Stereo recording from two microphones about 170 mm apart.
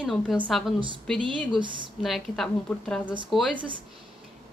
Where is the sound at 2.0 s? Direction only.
Centre (ahead or behind).